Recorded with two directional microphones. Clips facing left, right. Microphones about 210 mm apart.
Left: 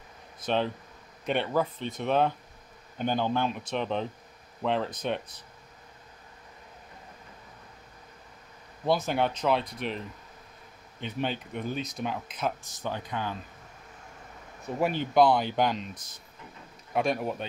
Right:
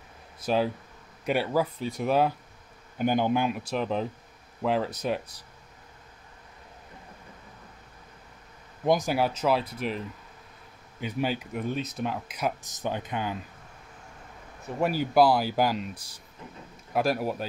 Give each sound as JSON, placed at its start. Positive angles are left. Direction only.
{"t": 1.2, "sound": "speech", "side_deg": -5}
{"t": 8.8, "sound": "speech", "side_deg": -15}
{"t": 12.4, "sound": "speech", "side_deg": -15}
{"t": 14.8, "sound": "speech", "side_deg": -5}